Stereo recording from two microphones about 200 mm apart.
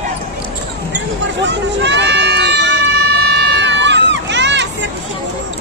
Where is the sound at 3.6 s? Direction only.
60° right (ahead or behind).